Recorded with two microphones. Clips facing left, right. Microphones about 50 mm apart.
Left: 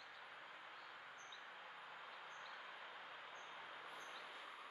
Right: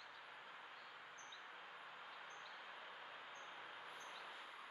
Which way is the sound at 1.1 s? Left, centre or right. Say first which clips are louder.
Even; centre.